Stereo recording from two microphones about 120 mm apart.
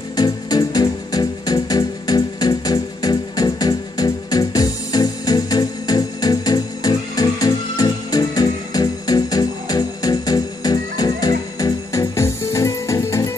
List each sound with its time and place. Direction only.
0.1 s music: 35° left (ahead or behind)